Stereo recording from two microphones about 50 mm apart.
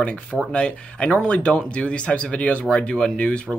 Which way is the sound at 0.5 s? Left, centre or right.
Left.